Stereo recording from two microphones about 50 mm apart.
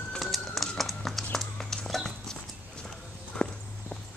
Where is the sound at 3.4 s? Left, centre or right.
Left.